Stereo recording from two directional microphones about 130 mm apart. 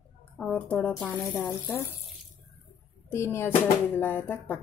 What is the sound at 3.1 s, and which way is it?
Speech, 20° left (ahead or behind).